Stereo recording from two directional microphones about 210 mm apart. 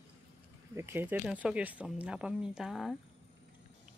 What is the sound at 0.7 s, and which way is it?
Speech, 10° right (ahead or behind).